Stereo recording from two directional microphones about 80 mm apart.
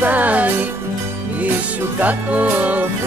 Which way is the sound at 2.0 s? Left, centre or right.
Right.